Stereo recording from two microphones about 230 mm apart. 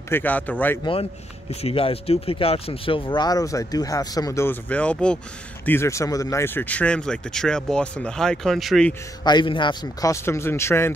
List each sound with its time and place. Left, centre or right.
0.1 s speech: centre
1.5 s speech: left; by 8.9 s centre
9.2 s speech: centre